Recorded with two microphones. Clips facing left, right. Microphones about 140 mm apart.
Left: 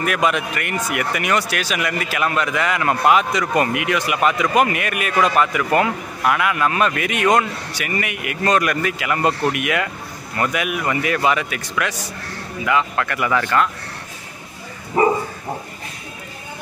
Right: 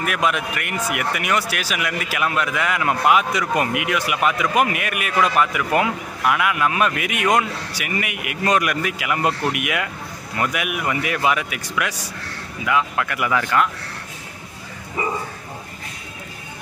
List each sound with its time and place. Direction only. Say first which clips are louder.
0.0 s speech: left 2 dB; 5° right (ahead or behind)
15.0 s bow-wow: left 9 dB; 45° left (ahead or behind)